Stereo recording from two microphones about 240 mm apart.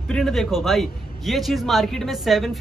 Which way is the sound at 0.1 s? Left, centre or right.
Centre.